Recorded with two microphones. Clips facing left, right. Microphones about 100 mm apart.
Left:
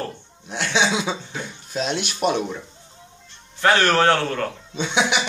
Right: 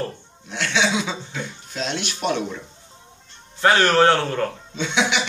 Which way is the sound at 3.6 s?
25° right (ahead or behind).